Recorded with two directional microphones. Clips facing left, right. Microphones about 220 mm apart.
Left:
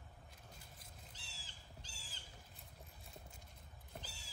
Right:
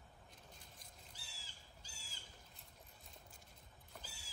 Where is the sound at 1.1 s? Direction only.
10° right (ahead or behind).